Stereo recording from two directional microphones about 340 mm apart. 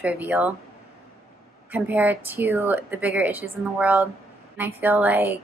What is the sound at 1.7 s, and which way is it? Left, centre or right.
A woman's voice, centre.